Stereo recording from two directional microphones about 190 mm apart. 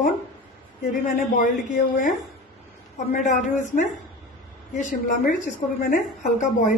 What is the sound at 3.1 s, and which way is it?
A woman's voice, 40° left (ahead or behind).